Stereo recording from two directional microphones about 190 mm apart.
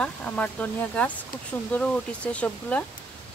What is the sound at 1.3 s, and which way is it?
Speech, 50° left (ahead or behind).